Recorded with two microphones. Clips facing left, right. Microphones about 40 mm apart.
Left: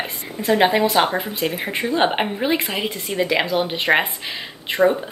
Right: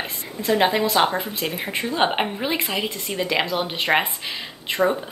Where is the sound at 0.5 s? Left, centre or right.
Centre.